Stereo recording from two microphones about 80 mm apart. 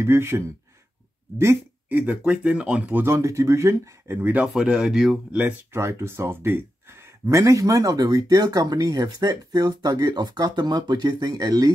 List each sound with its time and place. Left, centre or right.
0.0 s speech: right
1.9 s speech: right
3.1 s speech: right
4.2 s speech: right
4.6 s speech: centre
5.3 s speech: right
5.8 s speech: right
7.2 s speech: right